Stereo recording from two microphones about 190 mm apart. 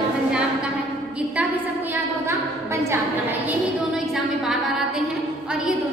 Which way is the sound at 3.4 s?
Centre (ahead or behind).